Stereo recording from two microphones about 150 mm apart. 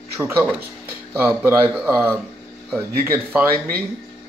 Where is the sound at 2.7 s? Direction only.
15° right (ahead or behind).